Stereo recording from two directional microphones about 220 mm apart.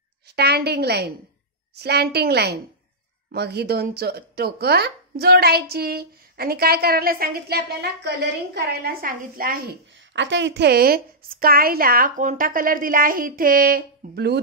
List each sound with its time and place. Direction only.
0.4 s speech: 45° right (ahead or behind)